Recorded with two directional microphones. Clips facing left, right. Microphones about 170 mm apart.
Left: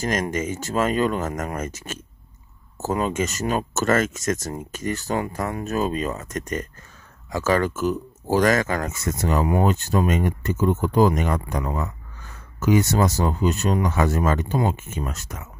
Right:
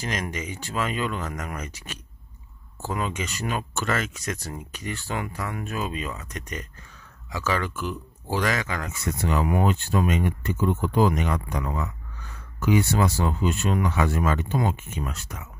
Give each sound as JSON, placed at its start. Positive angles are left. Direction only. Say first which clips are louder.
{"t": 0.0, "sound": "speech", "louder": "left 7 dB", "side_deg": 45}